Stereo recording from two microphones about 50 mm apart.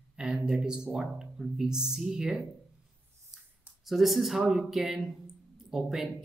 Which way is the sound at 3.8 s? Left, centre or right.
Centre.